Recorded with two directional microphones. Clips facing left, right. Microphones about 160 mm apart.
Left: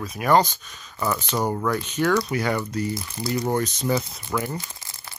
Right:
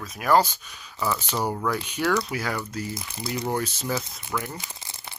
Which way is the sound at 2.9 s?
20° right (ahead or behind).